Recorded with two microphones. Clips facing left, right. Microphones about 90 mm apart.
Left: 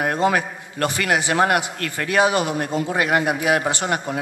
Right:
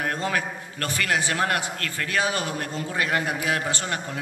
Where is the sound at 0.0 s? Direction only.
20° left (ahead or behind).